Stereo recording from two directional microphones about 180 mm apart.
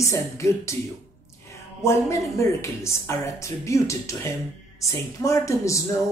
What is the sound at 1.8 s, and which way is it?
Speech, 15° left (ahead or behind).